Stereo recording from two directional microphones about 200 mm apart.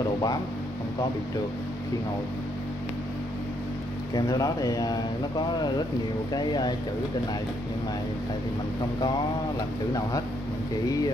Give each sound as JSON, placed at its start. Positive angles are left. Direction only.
{"t": 4.1, "sound": "speech", "side_deg": 20}
{"t": 6.3, "sound": "speech", "side_deg": 20}